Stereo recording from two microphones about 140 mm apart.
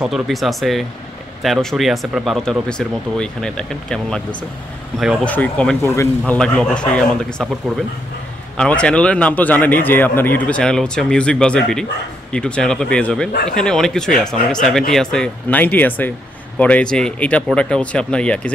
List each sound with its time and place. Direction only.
0.0 s speech: centre (ahead or behind)
5.2 s a man's voice: 10° left (ahead or behind)
5.9 s a man's voice: 20° left (ahead or behind)
6.3 s a man's voice: 5° left (ahead or behind)
8.5 s a man's voice: 5° left (ahead or behind)